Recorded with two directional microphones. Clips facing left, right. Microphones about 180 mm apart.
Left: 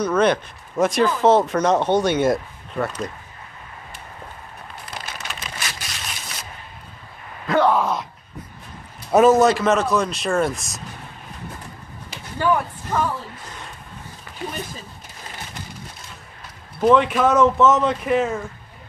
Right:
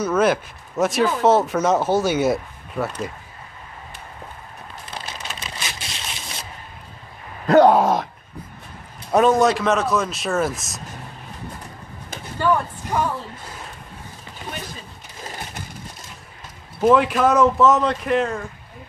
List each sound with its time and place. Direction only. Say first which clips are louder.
0.0 s speech: even; 5° right (ahead or behind)
5.6 s crushing: even; 25° right (ahead or behind)
7.4 s groan: right 5 dB; 45° right (ahead or behind)
9.1 s speech: left 2 dB; 5° left (ahead or behind)
12.4 s speech: even; 10° left (ahead or behind)
12.9 s speech: even; 10° right (ahead or behind)
16.8 s speech: even; 5° right (ahead or behind)